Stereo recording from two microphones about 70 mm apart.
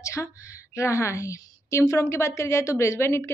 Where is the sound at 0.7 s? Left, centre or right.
Left.